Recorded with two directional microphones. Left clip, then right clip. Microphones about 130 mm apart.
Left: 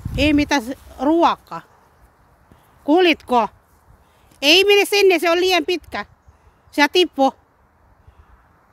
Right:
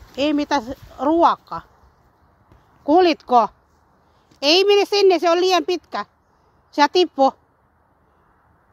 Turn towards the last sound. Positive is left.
turn(degrees=25)  # may be behind; listen again after turning